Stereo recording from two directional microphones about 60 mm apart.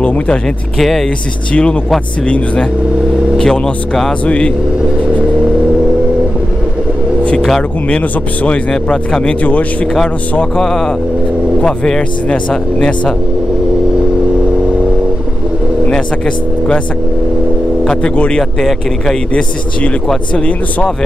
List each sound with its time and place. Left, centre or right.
0.0 s speech: left
0.7 s speech: centre
1.5 s a man's voice: centre
8.0 s a man's voice: left
8.6 s a man's voice: centre
10.6 s speech: centre
15.9 s speech: centre
17.8 s a man's voice: left
18.4 s speech: centre
20.3 s a man's voice: centre